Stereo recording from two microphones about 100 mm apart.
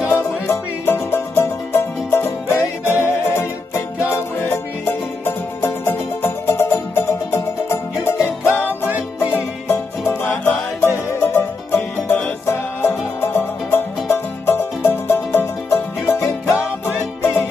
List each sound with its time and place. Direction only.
0.0 s music: 25° left (ahead or behind)